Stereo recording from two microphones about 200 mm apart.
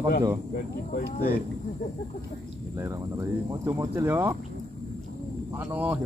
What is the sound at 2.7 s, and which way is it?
Speech, 15° right (ahead or behind).